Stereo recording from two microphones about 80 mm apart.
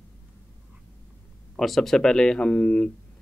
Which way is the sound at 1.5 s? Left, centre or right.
Centre.